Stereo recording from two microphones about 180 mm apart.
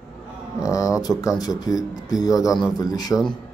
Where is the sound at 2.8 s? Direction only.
20° left (ahead or behind).